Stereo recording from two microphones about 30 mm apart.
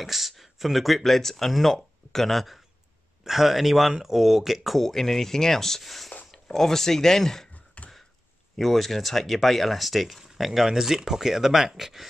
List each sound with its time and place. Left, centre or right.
0.0 s speech: centre
4.7 s speech: centre
7.5 s a sound: left
8.5 s speech: centre